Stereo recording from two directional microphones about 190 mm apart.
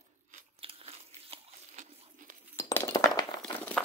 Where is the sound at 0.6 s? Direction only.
30° right (ahead or behind).